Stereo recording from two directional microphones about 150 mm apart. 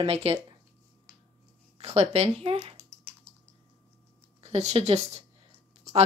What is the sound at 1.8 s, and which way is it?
Speech, 45° right (ahead or behind).